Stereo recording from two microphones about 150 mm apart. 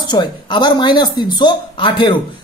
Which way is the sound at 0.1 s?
30° left (ahead or behind).